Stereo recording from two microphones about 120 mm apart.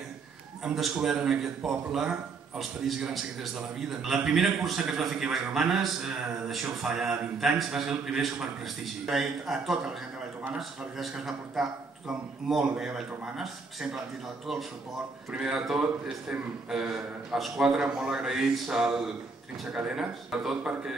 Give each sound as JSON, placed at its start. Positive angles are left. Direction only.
{"t": 0.7, "sound": "a man's voice", "side_deg": -5}
{"t": 15.3, "sound": "a man's voice", "side_deg": -5}